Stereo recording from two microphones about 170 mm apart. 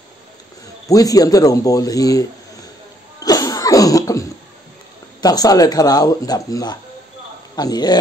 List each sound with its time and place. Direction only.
0.8 s speech: 20° left (ahead or behind)
3.2 s cough: 20° left (ahead or behind)
5.2 s speech: 20° left (ahead or behind)